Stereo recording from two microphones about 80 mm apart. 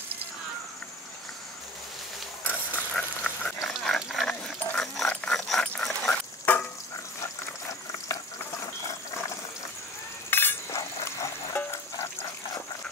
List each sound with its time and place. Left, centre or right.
2.4 s a sound: left
2.9 s a sound: centre
3.6 s dog: centre
5.0 s dog: centre
5.4 s dog: centre
6.5 s stir: left
8.1 s stir: left
10.3 s a sound: left
11.5 s music: left